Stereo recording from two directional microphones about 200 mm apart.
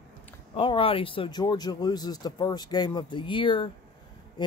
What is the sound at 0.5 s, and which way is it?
Speech, 25° left (ahead or behind).